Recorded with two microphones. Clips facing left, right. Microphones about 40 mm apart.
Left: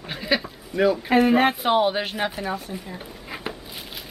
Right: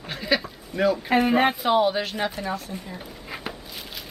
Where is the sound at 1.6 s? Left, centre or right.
Centre.